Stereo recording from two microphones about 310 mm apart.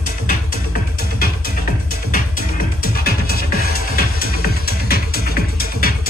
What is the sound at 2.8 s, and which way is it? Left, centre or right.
Music, left.